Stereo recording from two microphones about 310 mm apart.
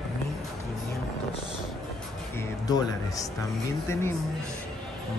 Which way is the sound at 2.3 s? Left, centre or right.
Centre.